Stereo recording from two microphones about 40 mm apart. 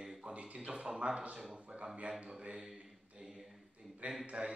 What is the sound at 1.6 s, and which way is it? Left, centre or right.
Speech, centre.